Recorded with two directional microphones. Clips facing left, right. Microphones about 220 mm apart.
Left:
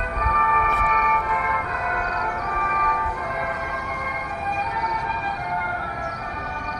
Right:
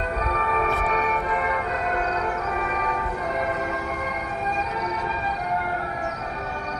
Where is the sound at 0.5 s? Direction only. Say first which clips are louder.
Right 3 dB; 30° right (ahead or behind).